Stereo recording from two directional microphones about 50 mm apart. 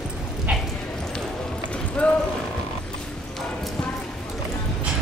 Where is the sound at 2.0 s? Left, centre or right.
Left.